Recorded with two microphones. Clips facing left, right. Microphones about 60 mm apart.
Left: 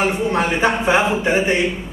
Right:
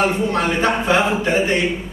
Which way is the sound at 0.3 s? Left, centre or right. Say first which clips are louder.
Left 1 dB; centre.